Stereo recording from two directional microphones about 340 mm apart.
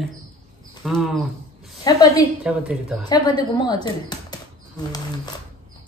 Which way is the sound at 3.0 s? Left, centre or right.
Centre.